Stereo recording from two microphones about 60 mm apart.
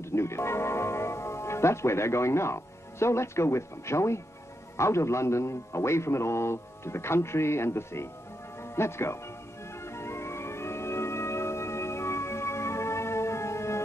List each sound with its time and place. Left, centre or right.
0.0 s a man's voice: left
9.8 s music: left